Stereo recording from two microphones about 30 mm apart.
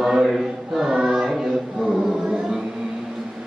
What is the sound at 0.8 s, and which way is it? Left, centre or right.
Choir, right.